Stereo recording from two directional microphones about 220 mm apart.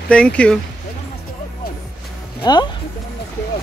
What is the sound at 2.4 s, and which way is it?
Speech, 20° left (ahead or behind).